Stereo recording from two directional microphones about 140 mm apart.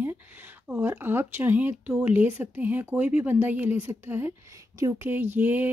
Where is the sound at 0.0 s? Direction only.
15° right (ahead or behind).